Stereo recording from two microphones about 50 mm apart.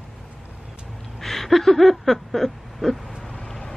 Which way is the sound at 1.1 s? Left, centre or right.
Centre.